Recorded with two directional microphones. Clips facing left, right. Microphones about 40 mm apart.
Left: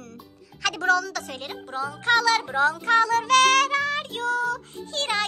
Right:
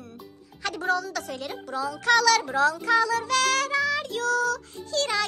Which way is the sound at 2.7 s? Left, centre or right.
Left.